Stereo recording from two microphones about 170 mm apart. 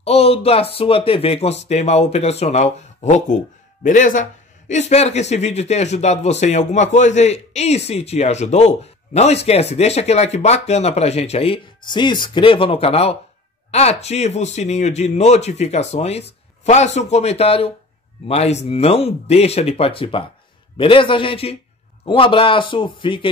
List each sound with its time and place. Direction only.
0.0 s a man's voice: 35° left (ahead or behind)